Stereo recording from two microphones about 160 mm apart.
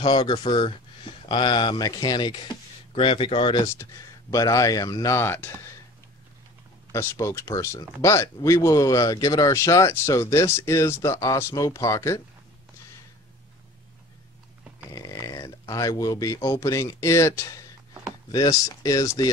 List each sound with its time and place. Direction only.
0.0 s speech: 30° left (ahead or behind)
4.3 s speech: 20° left (ahead or behind)
6.9 s speech: 15° left (ahead or behind)
14.9 s speech: 20° left (ahead or behind)